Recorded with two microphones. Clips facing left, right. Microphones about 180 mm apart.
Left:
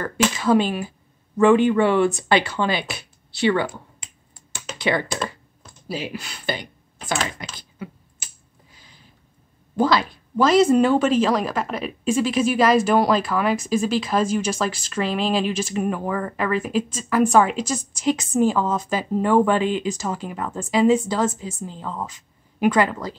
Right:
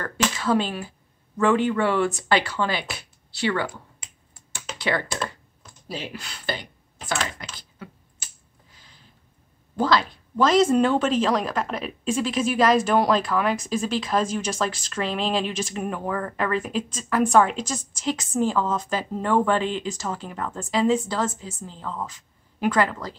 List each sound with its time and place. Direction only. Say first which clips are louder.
0.0 s speech: left 4 dB; 15° left (ahead or behind)
4.7 s speech: left 3 dB; 15° left (ahead or behind)
7.5 s a sound: left 6 dB; 15° left (ahead or behind)
9.8 s speech: left 2 dB; 10° left (ahead or behind)